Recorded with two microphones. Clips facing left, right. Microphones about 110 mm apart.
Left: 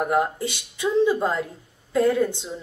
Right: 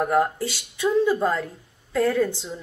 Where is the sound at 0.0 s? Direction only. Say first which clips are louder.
Right 1 dB; 15° left (ahead or behind).